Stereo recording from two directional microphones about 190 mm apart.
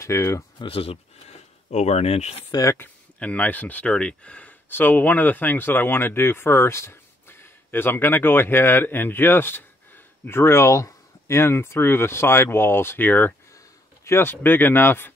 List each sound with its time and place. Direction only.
0.0 s speech: 15° left (ahead or behind)
0.7 s speech: 30° left (ahead or behind)
2.5 s speech: 15° left (ahead or behind)